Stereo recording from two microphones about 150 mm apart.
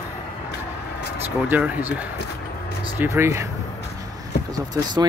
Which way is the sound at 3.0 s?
15° right (ahead or behind).